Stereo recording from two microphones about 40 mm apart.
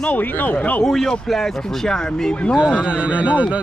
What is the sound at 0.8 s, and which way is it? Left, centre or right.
Speech, centre.